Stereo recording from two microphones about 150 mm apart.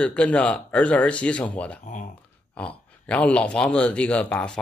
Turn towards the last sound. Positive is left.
turn(degrees=10)  # may be behind; listen again after turning